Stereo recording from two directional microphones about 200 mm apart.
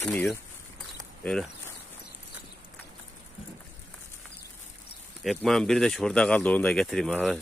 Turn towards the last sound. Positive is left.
turn(degrees=0)  # may be behind; listen again after turning